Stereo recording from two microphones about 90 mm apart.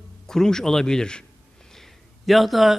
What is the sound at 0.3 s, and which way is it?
A man's voice, 5° left (ahead or behind).